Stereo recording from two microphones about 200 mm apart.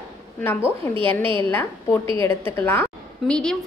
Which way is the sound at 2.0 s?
25° right (ahead or behind).